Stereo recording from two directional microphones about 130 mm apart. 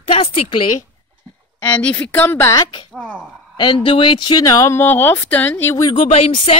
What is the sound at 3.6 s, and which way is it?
Speech, 40° left (ahead or behind).